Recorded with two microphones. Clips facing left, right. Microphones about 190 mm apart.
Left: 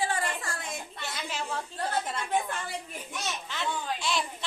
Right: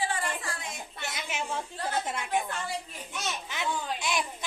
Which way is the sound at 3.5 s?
15° right (ahead or behind).